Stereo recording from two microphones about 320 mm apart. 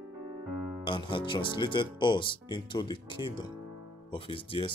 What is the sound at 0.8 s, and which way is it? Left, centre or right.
Speech, centre.